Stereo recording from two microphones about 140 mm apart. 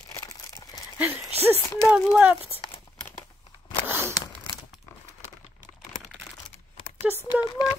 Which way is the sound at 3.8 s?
20° right (ahead or behind).